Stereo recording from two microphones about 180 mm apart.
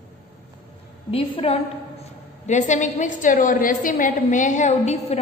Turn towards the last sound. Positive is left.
turn(degrees=40)  # may be behind; listen again after turning